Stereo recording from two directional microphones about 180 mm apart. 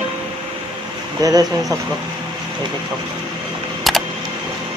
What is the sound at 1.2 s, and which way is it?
Speech, 20° right (ahead or behind).